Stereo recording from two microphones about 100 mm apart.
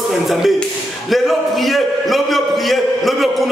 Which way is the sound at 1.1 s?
Centre (ahead or behind).